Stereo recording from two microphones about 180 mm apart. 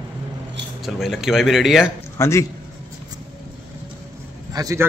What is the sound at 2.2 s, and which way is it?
Speech, 15° left (ahead or behind).